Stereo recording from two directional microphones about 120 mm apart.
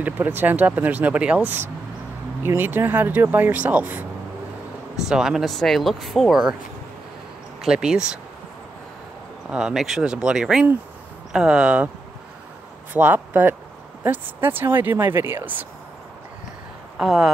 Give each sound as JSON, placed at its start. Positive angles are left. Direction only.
{"t": 0.4, "sound": "speech", "side_deg": -15}
{"t": 5.1, "sound": "speech", "side_deg": -5}
{"t": 7.6, "sound": "speech", "side_deg": -5}
{"t": 9.5, "sound": "speech", "side_deg": -5}
{"t": 12.9, "sound": "speech", "side_deg": -15}
{"t": 17.0, "sound": "speech", "side_deg": 0}